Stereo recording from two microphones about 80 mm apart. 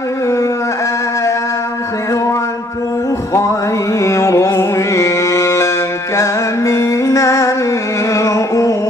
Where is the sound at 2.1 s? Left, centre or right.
Left.